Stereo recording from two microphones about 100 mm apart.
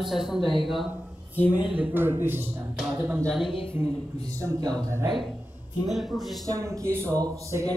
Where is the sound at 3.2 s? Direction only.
5° left (ahead or behind).